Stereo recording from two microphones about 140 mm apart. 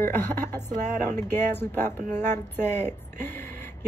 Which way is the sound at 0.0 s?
15° left (ahead or behind).